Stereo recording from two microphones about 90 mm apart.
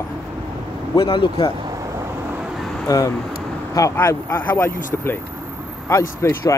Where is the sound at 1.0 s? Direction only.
70° left (ahead or behind).